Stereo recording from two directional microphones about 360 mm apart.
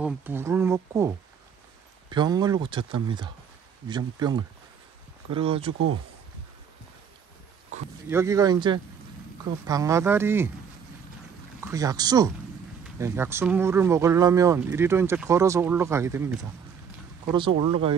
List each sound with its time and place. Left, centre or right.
0.0 s speech: centre
8.1 s speech: centre
11.6 s speech: centre